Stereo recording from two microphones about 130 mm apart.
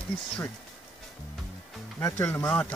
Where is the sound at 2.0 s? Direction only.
20° left (ahead or behind).